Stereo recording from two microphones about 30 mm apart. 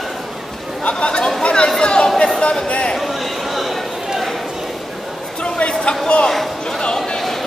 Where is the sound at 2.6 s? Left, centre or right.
Left.